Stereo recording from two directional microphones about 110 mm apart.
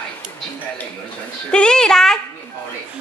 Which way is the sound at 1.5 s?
10° left (ahead or behind).